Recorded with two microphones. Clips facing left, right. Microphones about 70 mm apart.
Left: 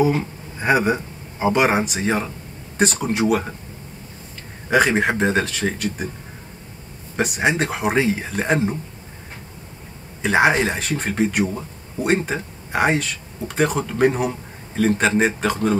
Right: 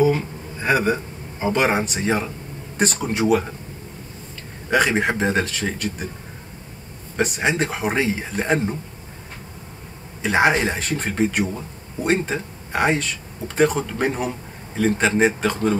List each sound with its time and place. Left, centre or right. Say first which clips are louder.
0.0 s a sound: right 1 dB; centre
0.9 s speech: left 1 dB; centre
4.6 s speech: left 2 dB; centre
7.2 s speech: left 1 dB; centre
10.2 s speech: left 1 dB; centre